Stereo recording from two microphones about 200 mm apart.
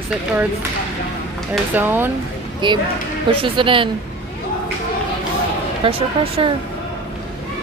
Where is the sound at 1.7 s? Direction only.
10° right (ahead or behind).